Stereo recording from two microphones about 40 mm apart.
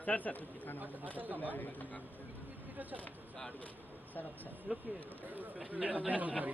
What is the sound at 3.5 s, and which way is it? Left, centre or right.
Speech, left.